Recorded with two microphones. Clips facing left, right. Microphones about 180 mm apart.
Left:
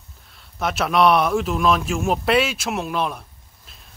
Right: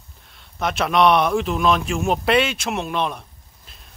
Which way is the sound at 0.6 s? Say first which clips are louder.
Even; centre (ahead or behind).